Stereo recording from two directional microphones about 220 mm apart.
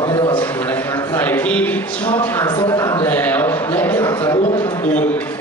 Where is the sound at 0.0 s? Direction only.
20° left (ahead or behind).